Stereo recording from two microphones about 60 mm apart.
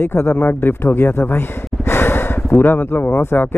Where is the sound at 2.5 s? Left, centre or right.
Left.